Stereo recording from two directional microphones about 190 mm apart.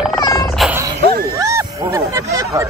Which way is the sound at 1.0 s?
50° right (ahead or behind).